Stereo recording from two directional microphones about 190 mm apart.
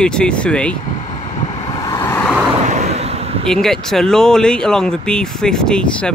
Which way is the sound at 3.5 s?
Centre (ahead or behind).